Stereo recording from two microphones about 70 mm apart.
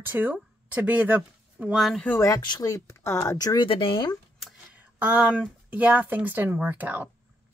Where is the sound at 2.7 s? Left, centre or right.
Left.